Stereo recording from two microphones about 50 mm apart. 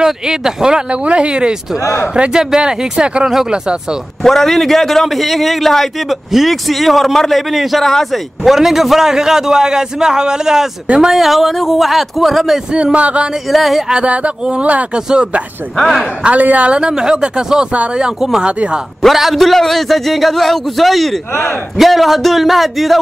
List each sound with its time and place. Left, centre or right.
0.0 s a man's voice: centre
1.0 s a man's voice: right
4.2 s a man's voice: centre
12.7 s speech: right
13.5 s a man's voice: centre
13.8 s speech: right
16.3 s a man's voice: right; by 22.9 s centre